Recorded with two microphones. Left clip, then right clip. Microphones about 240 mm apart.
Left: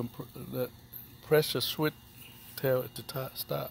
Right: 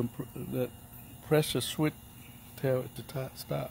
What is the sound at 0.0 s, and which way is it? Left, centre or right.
Speech, centre.